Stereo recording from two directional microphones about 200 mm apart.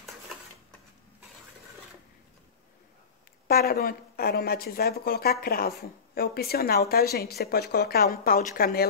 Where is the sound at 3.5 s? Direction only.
50° left (ahead or behind).